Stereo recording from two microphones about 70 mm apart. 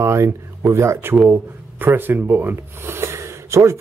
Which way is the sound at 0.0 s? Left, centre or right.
Right.